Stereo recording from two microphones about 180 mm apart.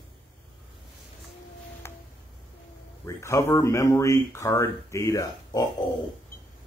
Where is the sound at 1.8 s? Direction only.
15° left (ahead or behind).